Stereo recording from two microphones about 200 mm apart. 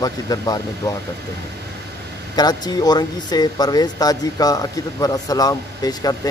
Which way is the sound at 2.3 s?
20° left (ahead or behind).